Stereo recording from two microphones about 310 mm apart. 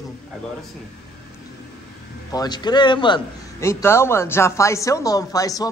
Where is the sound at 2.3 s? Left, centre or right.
Centre.